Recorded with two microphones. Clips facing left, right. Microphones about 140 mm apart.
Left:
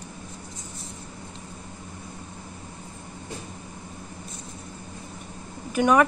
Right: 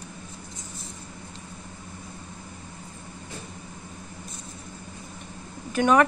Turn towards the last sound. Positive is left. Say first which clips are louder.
# even
turn(degrees=5)  # may be behind; listen again after turning